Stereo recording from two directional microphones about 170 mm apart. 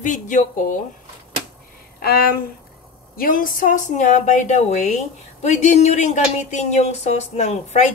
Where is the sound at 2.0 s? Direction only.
65° left (ahead or behind).